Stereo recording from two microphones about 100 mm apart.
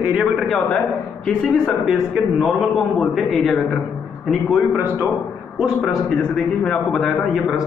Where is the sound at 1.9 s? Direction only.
5° right (ahead or behind).